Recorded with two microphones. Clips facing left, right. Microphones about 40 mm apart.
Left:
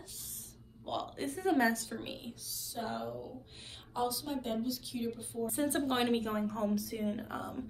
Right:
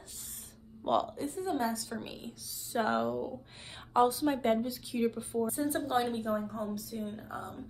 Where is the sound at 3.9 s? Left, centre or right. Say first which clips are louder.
Right 9 dB; right.